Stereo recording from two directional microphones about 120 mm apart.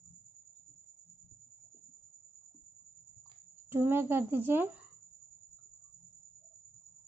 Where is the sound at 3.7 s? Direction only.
15° right (ahead or behind).